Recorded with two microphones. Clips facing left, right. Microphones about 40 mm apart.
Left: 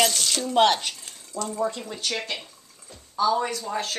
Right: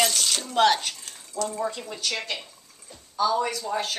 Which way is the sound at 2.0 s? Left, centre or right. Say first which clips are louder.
Left 1 dB; centre.